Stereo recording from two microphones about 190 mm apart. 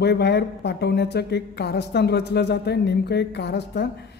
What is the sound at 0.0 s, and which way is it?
Speech, 60° left (ahead or behind).